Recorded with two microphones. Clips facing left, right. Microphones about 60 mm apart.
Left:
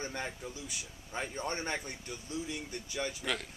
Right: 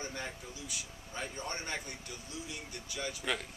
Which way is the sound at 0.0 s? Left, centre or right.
Left.